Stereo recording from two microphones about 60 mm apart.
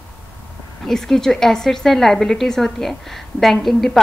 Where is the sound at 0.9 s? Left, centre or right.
Centre.